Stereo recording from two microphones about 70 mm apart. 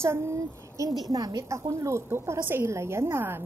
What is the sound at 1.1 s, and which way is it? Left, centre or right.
Speech, right.